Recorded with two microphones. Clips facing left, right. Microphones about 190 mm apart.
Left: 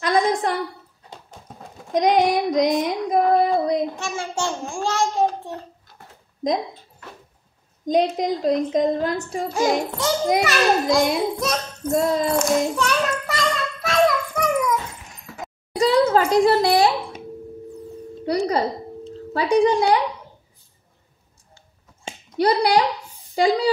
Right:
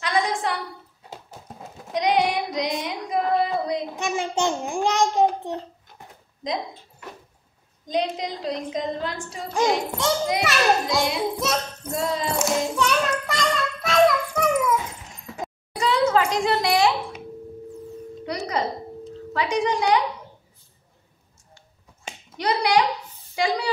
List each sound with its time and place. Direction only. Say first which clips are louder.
0.0 s a sound: left 4 dB; 45° left (ahead or behind)
1.1 s clip-clop: right 1 dB; 5° right (ahead or behind)
2.0 s child singing: left 4 dB; 45° left (ahead or behind)
3.9 s a child's voice: right 2 dB; 20° right (ahead or behind)
7.8 s a woman's voice: left 6 dB; 50° left (ahead or behind)
9.5 s a child's voice: even; 5° left (ahead or behind)
11.9 s a woman's voice: left 6 dB; 45° left (ahead or behind)
12.4 s child singing: left 3 dB; centre (ahead or behind)
15.8 s a sound: left 4 dB; 35° left (ahead or behind)
18.2 s a sound: left 6 dB; 30° left (ahead or behind)
19.3 s a woman's voice: left 6 dB; 35° left (ahead or behind)
21.5 s a sound: left 1 dB; 30° left (ahead or behind)
23.3 s a woman's voice: left 6 dB; 35° left (ahead or behind)